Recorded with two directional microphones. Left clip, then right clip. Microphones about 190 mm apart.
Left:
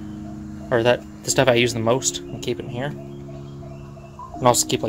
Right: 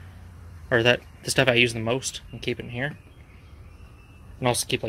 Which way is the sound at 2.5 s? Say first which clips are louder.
Left 2 dB; 10° left (ahead or behind).